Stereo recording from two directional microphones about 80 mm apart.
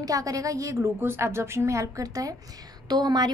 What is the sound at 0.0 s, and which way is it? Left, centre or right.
A woman's voice, right.